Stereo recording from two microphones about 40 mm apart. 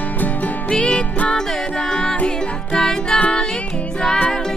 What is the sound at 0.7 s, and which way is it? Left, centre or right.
Music, left.